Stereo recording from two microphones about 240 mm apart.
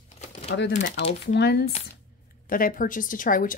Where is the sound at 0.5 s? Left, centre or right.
Left.